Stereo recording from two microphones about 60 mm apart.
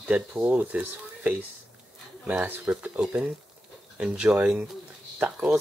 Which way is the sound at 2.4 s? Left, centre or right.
Right.